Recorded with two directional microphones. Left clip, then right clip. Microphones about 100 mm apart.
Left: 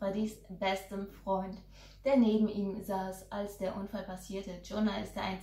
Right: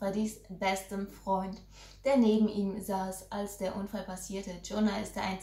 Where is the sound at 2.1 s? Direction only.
25° right (ahead or behind).